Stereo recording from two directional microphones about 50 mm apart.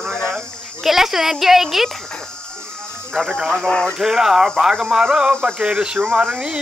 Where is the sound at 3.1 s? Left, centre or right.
Centre.